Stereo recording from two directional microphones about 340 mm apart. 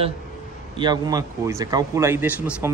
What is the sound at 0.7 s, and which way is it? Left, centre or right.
Speech, centre.